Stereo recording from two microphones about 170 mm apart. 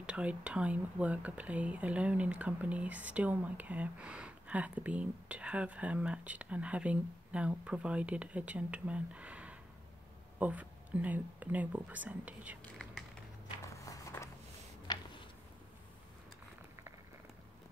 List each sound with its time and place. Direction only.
0.0 s speech: 5° right (ahead or behind)
13.7 s walk: 20° left (ahead or behind)
14.9 s a sound: 25° left (ahead or behind)